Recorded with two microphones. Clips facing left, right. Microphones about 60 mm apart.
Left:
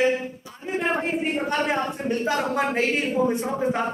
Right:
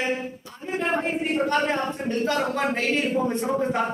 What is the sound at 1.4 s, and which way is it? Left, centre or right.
A capella, centre.